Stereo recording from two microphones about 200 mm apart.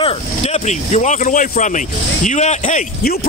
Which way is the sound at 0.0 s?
35° left (ahead or behind).